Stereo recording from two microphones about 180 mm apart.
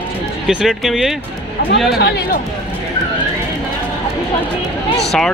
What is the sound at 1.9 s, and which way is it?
Speech, 65° left (ahead or behind).